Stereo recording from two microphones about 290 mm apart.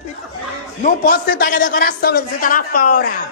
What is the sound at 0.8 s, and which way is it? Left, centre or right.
A man's voice, left.